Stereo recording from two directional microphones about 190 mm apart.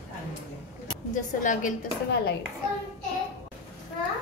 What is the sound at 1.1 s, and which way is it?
Speech, 40° left (ahead or behind).